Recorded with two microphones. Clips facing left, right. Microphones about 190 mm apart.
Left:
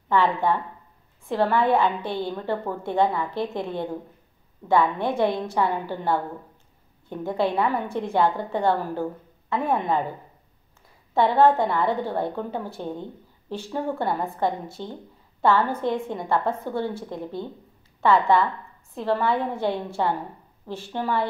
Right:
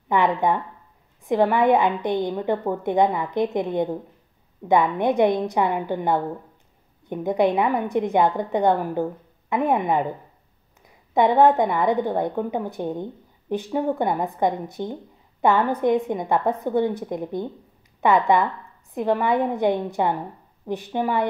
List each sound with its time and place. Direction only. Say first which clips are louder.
0.1 s a woman's voice: right 1 dB; 20° right (ahead or behind)
11.1 s a woman's voice: right 2 dB; 15° right (ahead or behind)